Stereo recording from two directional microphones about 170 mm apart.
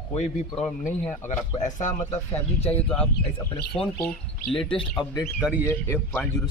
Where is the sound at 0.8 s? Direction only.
50° left (ahead or behind).